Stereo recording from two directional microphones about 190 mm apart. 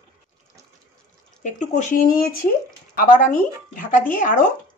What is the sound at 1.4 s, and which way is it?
Speech, 40° left (ahead or behind).